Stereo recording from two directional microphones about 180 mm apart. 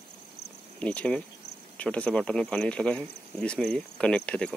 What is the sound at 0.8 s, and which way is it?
Speech, 5° left (ahead or behind).